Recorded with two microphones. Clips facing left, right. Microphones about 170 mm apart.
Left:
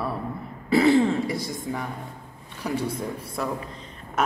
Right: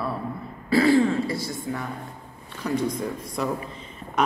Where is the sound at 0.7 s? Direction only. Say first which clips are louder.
Even; 20° left (ahead or behind).